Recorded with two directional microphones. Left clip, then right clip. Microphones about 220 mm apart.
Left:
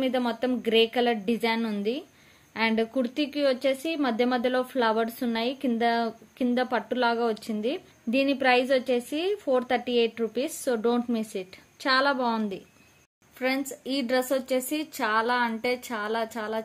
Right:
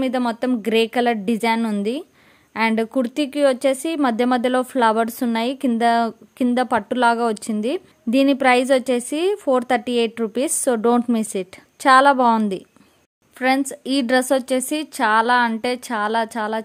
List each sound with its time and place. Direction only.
0.0 s a woman's voice: 55° right (ahead or behind)